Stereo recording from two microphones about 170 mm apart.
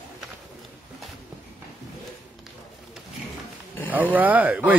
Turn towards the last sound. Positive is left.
turn(degrees=-10)  # may be behind; listen again after turning